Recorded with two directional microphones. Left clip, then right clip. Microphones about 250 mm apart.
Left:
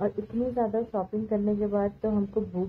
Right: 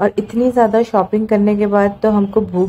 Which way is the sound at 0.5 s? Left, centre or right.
Right.